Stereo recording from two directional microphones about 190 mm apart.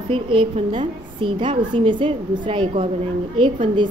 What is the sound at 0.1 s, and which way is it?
A woman's voice, 25° right (ahead or behind).